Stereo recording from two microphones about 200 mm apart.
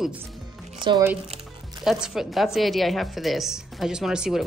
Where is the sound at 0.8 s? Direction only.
20° right (ahead or behind).